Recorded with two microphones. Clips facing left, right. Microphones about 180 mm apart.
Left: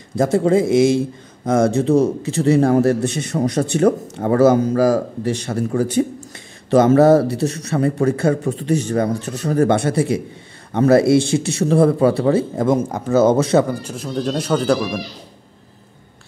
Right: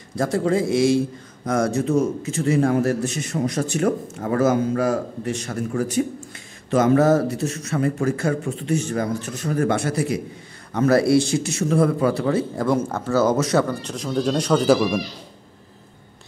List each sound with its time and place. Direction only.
0.1 s a man's voice: 25° left (ahead or behind)
13.7 s speech: 10° left (ahead or behind)